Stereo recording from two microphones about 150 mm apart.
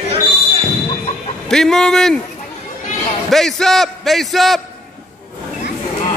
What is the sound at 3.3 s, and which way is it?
A man's voice, centre (ahead or behind).